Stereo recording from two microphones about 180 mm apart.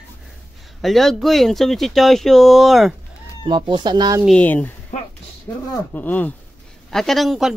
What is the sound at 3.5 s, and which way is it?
Speech, 25° right (ahead or behind).